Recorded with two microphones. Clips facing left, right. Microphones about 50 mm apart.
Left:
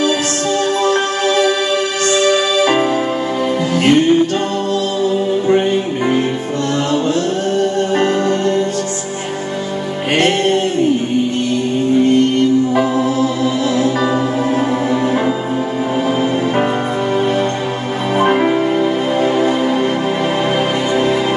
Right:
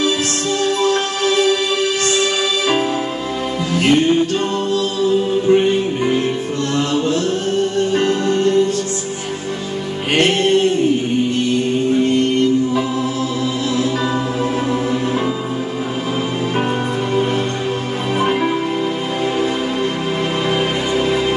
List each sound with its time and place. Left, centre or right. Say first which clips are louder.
0.8 s music: left 2 dB; left
6.7 s music: left 1 dB; left
12.7 s music: left 4 dB; left
18.2 s music: left 4 dB; left